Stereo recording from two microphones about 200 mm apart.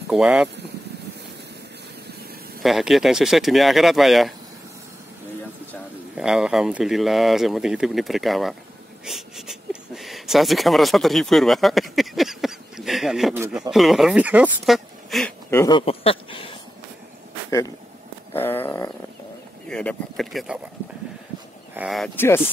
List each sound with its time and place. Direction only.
0.1 s speech: 5° right (ahead or behind)
2.6 s speech: centre (ahead or behind)
6.1 s speech: 5° right (ahead or behind)
15.7 s a sound: 30° left (ahead or behind)
17.5 s speech: 15° left (ahead or behind)
18.3 s a sound: 10° left (ahead or behind)
19.7 s speech: 5° left (ahead or behind)
21.7 s speech: centre (ahead or behind)